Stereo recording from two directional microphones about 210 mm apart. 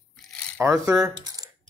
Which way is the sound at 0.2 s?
Centre (ahead or behind).